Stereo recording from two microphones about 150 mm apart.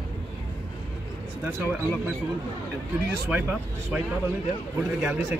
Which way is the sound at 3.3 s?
10° right (ahead or behind).